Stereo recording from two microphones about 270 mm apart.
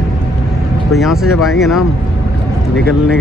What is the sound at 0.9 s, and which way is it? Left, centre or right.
Speech, centre.